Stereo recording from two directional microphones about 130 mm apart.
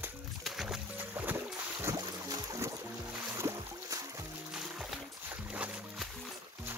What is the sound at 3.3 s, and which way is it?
Music, 25° right (ahead or behind).